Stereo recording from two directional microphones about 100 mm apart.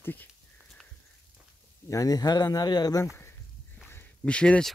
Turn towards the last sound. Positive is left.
turn(degrees=10)  # may be behind; listen again after turning